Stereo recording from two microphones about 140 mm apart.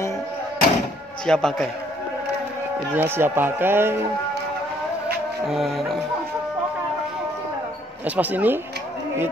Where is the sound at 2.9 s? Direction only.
15° right (ahead or behind).